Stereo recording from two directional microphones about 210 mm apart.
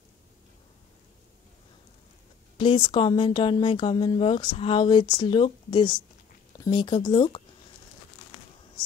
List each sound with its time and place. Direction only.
2.5 s speech: 25° left (ahead or behind)